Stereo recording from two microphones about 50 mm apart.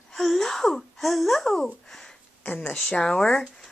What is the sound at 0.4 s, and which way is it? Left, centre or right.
A woman's voice, centre.